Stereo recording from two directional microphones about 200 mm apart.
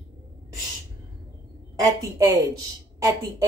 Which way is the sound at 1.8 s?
15° right (ahead or behind).